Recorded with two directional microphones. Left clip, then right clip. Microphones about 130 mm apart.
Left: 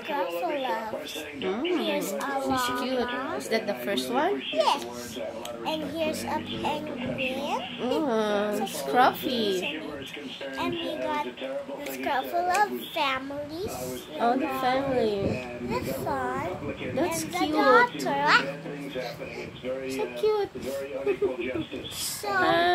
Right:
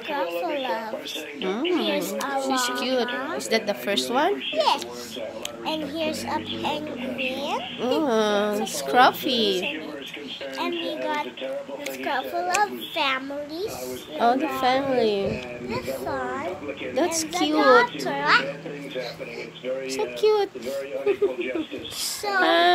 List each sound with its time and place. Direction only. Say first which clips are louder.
0.1 s a child's voice: right 2 dB; 5° right (ahead or behind)
1.4 s a woman's voice: right 3 dB; 20° right (ahead or behind)
1.7 s a child's voice: right 4 dB; 10° right (ahead or behind)
2.1 s a woman's voice: right 3 dB; 25° right (ahead or behind)
5.7 s a child's voice: right 2 dB; 5° right (ahead or behind)
7.8 s a woman's voice: right 5 dB; 25° right (ahead or behind)
10.6 s a woman's voice: right 2 dB; 25° right (ahead or behind)
12.0 s a child's voice: even; 5° right (ahead or behind)
14.1 s a child's voice: right 4 dB; 35° right (ahead or behind)
15.7 s a child's voice: right 1 dB; 5° right (ahead or behind)
16.9 s a child's voice: right 4 dB; 30° right (ahead or behind)
17.7 s a child's voice: right 2 dB; centre (ahead or behind)
20.0 s a child's voice: right 5 dB; 30° right (ahead or behind)
22.2 s a woman's voice: right 4 dB; 25° right (ahead or behind)